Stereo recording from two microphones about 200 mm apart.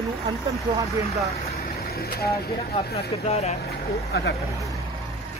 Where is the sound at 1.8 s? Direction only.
50° left (ahead or behind).